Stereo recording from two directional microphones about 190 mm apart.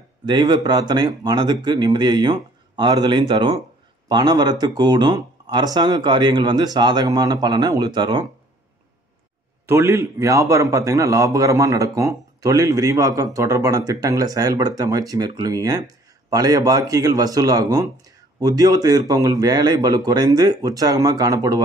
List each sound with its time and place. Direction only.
0.2 s speech: 25° right (ahead or behind)
9.7 s speech: 15° right (ahead or behind)